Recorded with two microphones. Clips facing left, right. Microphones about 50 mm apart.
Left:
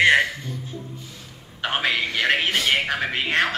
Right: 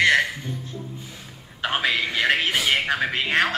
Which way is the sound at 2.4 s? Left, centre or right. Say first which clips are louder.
Even; centre.